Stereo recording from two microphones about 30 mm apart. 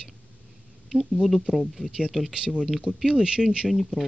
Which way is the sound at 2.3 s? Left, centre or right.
Right.